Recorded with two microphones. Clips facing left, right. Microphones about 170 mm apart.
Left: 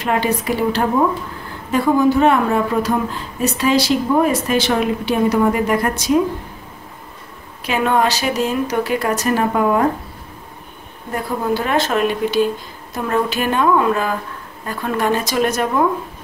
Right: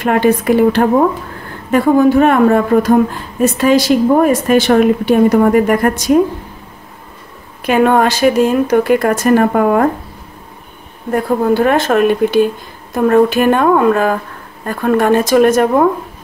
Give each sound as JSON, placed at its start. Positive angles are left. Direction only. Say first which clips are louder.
{"t": 0.0, "sound": "a woman's voice", "louder": "right 7 dB", "side_deg": -50}
{"t": 7.6, "sound": "a woman's voice", "louder": "right 6 dB", "side_deg": -50}
{"t": 11.2, "sound": "a woman's voice", "louder": "right 8 dB", "side_deg": -50}